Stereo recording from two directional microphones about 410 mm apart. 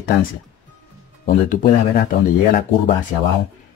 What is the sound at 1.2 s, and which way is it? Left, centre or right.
Speech, centre.